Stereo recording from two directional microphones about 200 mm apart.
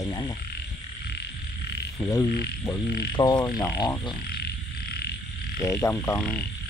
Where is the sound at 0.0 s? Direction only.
20° left (ahead or behind).